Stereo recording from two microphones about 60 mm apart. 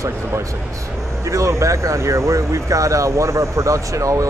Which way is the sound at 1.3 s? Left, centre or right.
Right.